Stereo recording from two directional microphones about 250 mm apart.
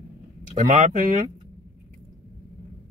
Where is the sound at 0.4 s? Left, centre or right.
Right.